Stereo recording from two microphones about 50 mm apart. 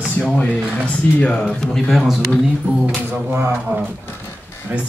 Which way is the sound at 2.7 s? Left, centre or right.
Right.